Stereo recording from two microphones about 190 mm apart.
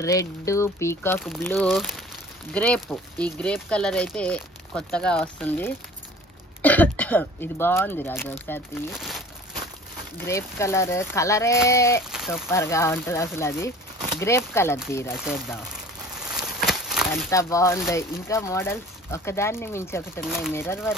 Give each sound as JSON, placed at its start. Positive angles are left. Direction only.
{"t": 0.5, "sound": "speech", "side_deg": 15}
{"t": 8.9, "sound": "crumpling", "side_deg": 0}
{"t": 10.2, "sound": "speech", "side_deg": 15}
{"t": 12.1, "sound": "a sound", "side_deg": 0}
{"t": 12.4, "sound": "speech", "side_deg": 15}
{"t": 15.0, "sound": "speech", "side_deg": -5}
{"t": 15.7, "sound": "a sound", "side_deg": -5}
{"t": 17.1, "sound": "speech", "side_deg": 15}
{"t": 20.2, "sound": "speech", "side_deg": -5}
{"t": 20.5, "sound": "speech", "side_deg": 10}